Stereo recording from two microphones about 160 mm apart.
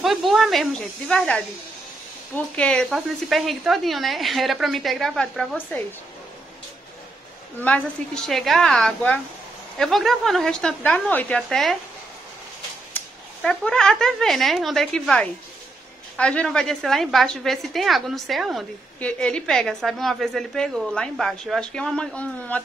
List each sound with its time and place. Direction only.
0.0 s a woman's voice: centre (ahead or behind)
7.6 s a woman's voice: 5° left (ahead or behind)
12.9 s a woman's voice: 5° left (ahead or behind)